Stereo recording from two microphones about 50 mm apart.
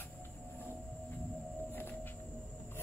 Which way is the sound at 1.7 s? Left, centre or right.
Left.